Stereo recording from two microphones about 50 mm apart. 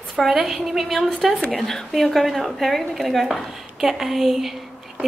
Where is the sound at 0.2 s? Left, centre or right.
Centre.